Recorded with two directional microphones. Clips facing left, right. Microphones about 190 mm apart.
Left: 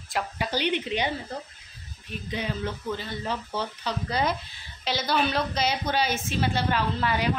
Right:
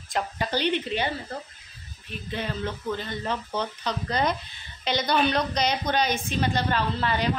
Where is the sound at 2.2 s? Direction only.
10° left (ahead or behind).